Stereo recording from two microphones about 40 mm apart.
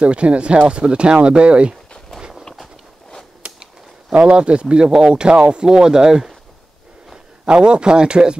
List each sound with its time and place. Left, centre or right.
0.0 s speech: right
4.1 s speech: right
7.4 s speech: right